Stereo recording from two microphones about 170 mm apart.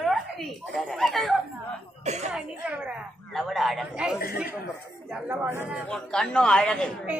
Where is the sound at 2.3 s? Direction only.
5° right (ahead or behind).